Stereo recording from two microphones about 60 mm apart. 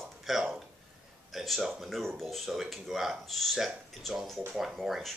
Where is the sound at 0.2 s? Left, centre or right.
Centre.